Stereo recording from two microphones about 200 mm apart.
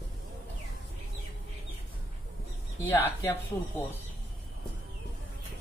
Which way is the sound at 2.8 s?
15° left (ahead or behind).